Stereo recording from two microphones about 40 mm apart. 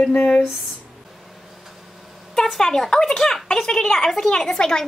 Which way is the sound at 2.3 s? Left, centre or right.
Centre.